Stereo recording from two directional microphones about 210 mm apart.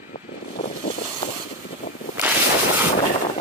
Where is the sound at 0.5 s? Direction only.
50° left (ahead or behind).